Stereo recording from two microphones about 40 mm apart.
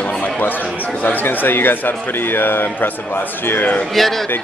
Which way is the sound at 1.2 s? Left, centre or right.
Left.